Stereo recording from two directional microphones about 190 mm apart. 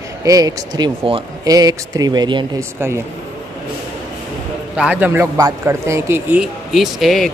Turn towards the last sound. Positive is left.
turn(degrees=0)  # may be behind; listen again after turning